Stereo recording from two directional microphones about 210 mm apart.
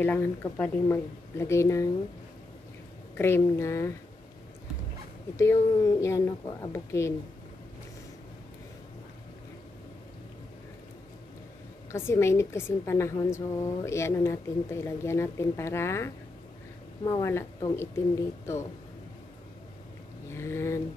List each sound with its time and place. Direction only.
0.0 s a woman's voice: 10° left (ahead or behind)
3.2 s a woman's voice: 10° left (ahead or behind)
5.3 s a woman's voice: 15° left (ahead or behind)
11.9 s a woman's voice: 10° left (ahead or behind)
20.3 s a woman's voice: 10° left (ahead or behind)